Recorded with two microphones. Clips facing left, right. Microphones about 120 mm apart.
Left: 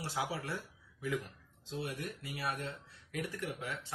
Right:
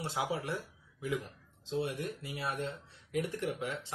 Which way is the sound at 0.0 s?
20° right (ahead or behind).